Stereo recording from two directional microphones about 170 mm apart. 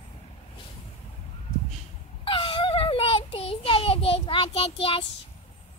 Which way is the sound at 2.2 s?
30° left (ahead or behind).